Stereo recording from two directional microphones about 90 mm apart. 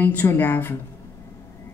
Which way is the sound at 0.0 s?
20° left (ahead or behind).